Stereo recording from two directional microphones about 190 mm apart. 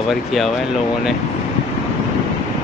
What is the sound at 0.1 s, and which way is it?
Speech, centre (ahead or behind).